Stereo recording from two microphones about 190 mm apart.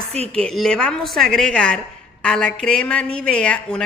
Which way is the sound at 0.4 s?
5° left (ahead or behind).